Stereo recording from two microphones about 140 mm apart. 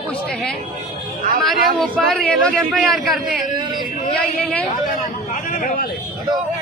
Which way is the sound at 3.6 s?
30° right (ahead or behind).